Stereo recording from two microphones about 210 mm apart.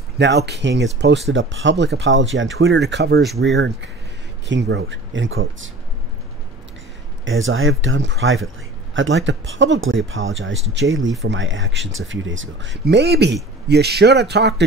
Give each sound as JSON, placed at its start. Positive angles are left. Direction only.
{"t": 0.2, "sound": "speech", "side_deg": -50}
{"t": 7.2, "sound": "speech", "side_deg": -65}